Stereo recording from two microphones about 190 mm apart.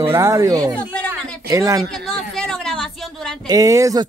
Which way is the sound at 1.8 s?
5° left (ahead or behind).